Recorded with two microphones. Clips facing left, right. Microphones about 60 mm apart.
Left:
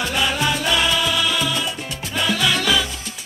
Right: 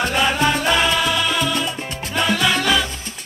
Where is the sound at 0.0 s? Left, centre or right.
Right.